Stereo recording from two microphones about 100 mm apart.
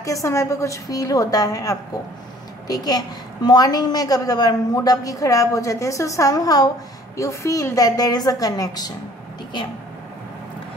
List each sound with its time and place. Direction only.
0.0 s a woman's voice: 30° left (ahead or behind)